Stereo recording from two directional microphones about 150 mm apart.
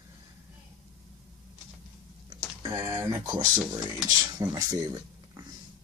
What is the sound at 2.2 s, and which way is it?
Speech, 25° right (ahead or behind).